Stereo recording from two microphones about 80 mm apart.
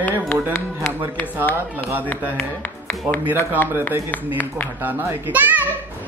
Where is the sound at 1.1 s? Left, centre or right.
Left.